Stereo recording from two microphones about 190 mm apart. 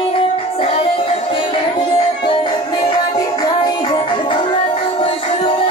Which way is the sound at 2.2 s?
25° left (ahead or behind).